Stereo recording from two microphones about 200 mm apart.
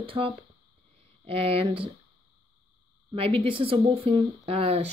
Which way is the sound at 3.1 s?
30° right (ahead or behind).